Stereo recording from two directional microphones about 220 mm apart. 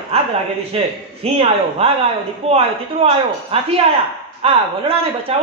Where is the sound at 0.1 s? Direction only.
25° right (ahead or behind).